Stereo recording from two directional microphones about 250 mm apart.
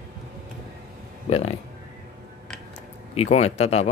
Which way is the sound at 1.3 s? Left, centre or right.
Left.